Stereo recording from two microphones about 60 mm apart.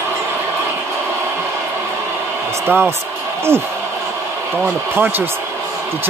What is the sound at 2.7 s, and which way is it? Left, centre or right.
Speech, right.